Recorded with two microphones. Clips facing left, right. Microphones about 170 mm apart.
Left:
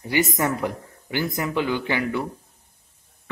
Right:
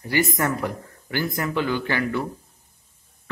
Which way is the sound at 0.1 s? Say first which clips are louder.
Even; 20° left (ahead or behind).